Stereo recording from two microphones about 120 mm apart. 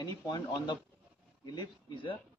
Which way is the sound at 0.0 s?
35° left (ahead or behind).